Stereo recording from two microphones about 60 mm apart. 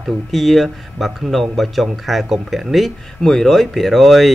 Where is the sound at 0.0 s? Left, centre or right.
Centre.